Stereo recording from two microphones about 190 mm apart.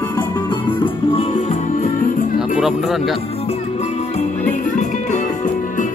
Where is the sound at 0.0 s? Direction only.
20° left (ahead or behind); by 2.1 s 45° left (ahead or behind).